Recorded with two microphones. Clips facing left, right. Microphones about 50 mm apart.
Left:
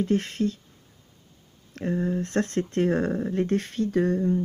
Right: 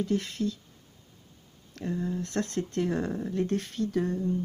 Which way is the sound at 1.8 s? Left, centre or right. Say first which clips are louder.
Left 5 dB; left.